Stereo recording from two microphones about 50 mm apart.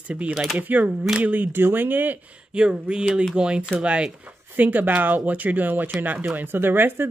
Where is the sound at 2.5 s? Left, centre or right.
Centre.